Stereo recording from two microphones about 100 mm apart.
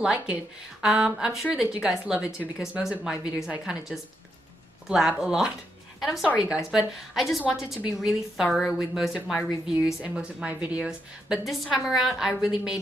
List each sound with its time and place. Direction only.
0.0 s a woman's voice: 10° right (ahead or behind)